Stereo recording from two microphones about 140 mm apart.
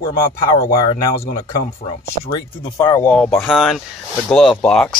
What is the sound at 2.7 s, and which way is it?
Speech, 20° left (ahead or behind).